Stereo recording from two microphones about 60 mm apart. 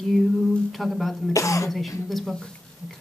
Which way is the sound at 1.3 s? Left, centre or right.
Left.